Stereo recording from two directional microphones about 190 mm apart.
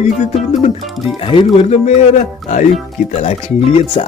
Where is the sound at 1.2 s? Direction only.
30° left (ahead or behind).